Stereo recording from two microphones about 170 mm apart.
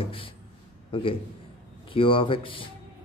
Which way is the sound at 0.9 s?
30° left (ahead or behind).